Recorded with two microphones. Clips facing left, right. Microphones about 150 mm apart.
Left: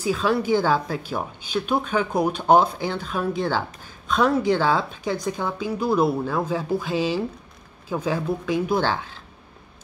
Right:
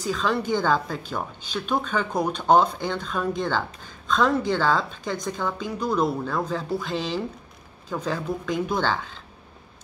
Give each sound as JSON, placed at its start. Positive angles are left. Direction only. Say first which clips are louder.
{"t": 0.0, "sound": "speech", "louder": "left 3 dB", "side_deg": 10}